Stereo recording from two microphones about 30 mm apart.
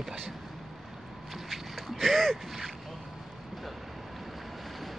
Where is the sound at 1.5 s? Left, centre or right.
Centre.